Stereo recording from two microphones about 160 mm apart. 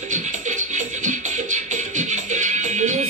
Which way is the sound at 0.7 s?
50° right (ahead or behind).